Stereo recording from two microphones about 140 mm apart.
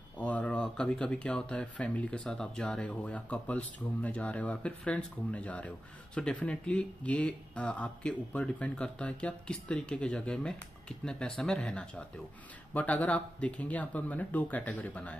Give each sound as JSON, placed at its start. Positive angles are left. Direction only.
{"t": 0.2, "sound": "speech", "side_deg": 10}